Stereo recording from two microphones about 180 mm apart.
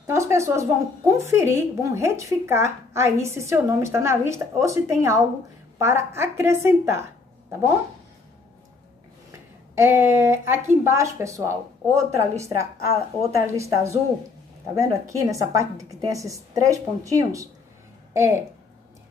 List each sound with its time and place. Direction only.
0.0 s a woman's voice: 15° right (ahead or behind)
9.8 s a woman's voice: 15° right (ahead or behind)